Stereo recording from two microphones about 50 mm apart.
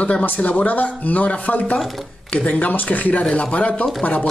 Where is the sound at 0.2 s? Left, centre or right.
Left.